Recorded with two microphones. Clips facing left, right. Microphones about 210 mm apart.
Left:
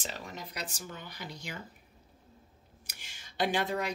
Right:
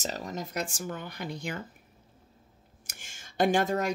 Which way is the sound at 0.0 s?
40° right (ahead or behind).